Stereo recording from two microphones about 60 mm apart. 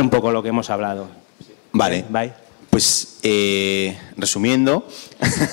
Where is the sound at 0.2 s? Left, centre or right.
Left.